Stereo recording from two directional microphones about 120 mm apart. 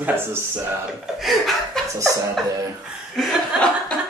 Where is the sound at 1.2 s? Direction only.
Centre (ahead or behind).